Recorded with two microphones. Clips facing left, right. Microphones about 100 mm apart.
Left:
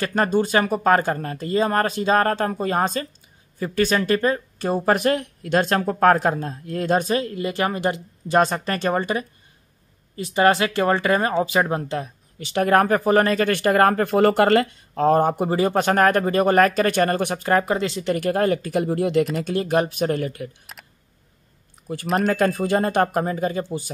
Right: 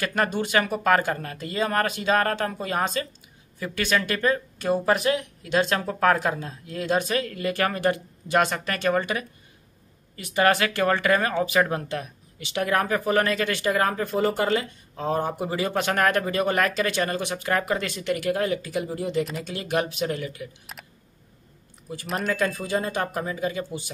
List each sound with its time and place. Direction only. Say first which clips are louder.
0.0 s speech: left 5 dB; 35° left (ahead or behind)
8.4 s speech: left 4 dB; 35° left (ahead or behind)
12.4 s speech: left 6 dB; 45° left (ahead or behind)
13.5 s speech: left 6 dB; 55° left (ahead or behind)
15.5 s speech: left 4 dB; 40° left (ahead or behind)
17.4 s speech: left 4 dB; 35° left (ahead or behind); by 19.2 s 65° left (ahead or behind)
19.4 s speech: left 6 dB; 40° left (ahead or behind)
20.7 s a sound: right 1 dB; centre (ahead or behind)
22.1 s speech: left 6 dB; 35° left (ahead or behind)
22.4 s speech: left 6 dB; 55° left (ahead or behind)